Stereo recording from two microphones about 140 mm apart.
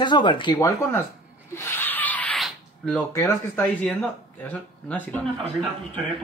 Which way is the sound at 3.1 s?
20° left (ahead or behind).